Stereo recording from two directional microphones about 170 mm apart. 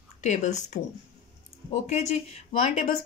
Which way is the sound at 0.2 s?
45° left (ahead or behind).